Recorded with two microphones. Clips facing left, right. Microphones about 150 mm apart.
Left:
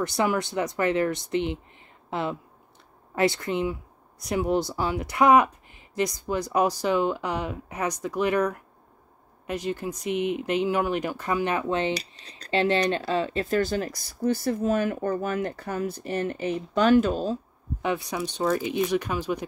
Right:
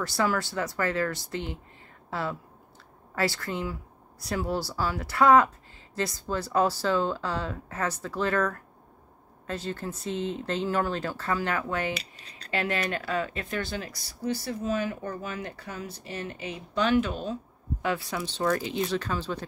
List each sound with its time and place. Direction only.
0.0 s a woman's voice: 20° left (ahead or behind)
11.9 s speech: 40° left (ahead or behind)
17.8 s a woman's voice: 20° left (ahead or behind)